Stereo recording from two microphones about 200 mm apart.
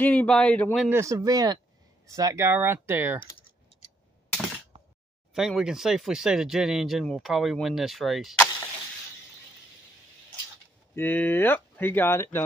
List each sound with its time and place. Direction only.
0.0 s speech: 10° left (ahead or behind)
0.8 s speech: 15° right (ahead or behind)
5.3 s speech: centre (ahead or behind)
11.0 s speech: 10° left (ahead or behind)